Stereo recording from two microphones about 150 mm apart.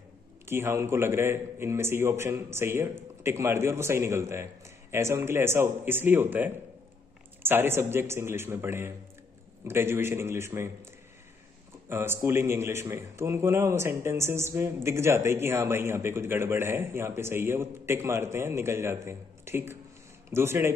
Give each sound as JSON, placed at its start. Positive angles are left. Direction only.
{"t": 0.5, "sound": "a man's voice", "side_deg": -20}
{"t": 11.9, "sound": "a man's voice", "side_deg": -15}